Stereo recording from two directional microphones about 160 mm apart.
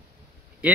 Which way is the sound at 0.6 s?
5° right (ahead or behind).